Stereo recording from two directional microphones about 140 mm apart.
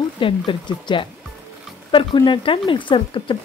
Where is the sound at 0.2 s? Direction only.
35° left (ahead or behind).